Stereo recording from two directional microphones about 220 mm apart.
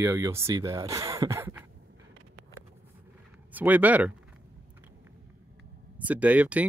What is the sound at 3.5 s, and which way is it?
Speech, 5° right (ahead or behind).